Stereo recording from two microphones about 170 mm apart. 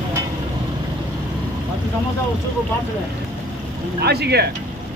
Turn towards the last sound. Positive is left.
turn(degrees=-70)  # may be behind; listen again after turning